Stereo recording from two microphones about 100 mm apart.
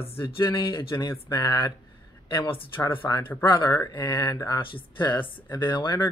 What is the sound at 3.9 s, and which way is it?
Speech, 50° left (ahead or behind).